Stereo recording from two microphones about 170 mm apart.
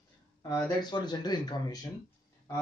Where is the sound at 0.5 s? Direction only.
20° left (ahead or behind).